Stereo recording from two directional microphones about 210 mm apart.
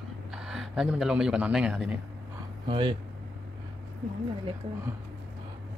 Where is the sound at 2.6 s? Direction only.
25° right (ahead or behind).